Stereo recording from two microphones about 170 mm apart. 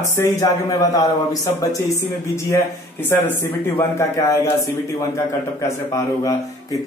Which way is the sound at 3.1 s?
10° left (ahead or behind).